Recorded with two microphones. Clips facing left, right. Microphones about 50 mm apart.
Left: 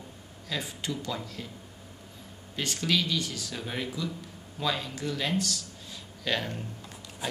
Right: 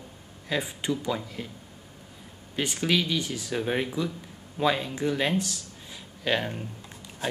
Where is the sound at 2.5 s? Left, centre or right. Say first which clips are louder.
Right 3 dB; centre.